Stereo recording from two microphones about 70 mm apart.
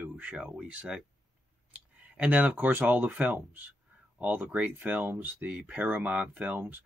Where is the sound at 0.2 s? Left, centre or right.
Centre.